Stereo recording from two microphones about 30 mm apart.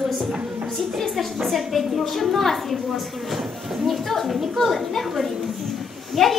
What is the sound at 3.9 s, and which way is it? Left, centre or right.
Speech, centre.